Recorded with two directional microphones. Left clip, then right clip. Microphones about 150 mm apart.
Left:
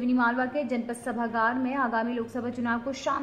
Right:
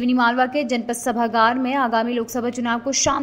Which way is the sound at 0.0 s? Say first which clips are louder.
Right 8 dB; 30° right (ahead or behind).